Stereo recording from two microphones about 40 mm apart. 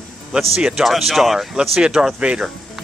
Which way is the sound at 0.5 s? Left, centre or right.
Centre.